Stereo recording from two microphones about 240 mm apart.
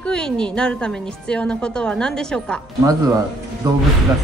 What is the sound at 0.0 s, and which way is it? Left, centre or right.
A woman's voice, centre.